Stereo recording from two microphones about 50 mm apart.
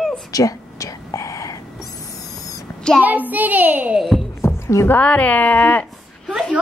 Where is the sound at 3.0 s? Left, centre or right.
Right.